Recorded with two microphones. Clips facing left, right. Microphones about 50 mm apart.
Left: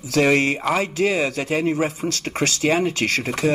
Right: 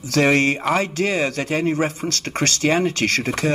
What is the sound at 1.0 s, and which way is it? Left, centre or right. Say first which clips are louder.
Speech: left 1 dB; right.